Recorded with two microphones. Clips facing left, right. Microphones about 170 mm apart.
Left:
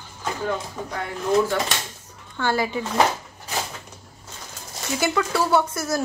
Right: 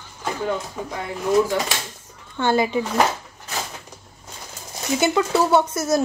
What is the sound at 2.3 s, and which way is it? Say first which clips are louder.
Speech: right 4 dB; 20° right (ahead or behind).